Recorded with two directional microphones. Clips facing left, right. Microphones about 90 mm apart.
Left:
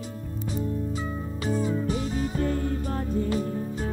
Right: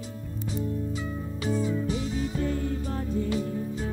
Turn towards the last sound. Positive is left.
turn(degrees=45)  # may be behind; listen again after turning